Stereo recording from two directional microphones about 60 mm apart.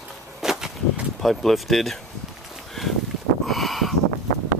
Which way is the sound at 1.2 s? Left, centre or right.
Centre.